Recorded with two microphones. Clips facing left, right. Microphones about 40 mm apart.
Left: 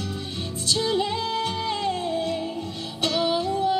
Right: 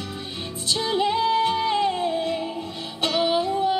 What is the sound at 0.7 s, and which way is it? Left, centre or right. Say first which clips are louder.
Music: right 2 dB; centre.